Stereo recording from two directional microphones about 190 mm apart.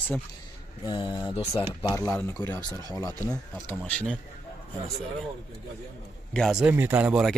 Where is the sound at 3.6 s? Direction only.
10° left (ahead or behind).